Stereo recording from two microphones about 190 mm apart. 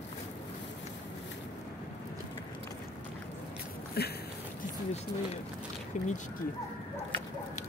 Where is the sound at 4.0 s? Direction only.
55° left (ahead or behind).